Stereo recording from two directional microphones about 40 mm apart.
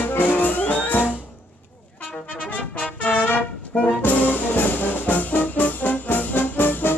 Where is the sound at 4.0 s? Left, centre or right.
Left.